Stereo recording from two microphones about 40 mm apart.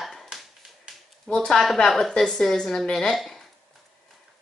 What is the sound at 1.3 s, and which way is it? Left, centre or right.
Speech, left.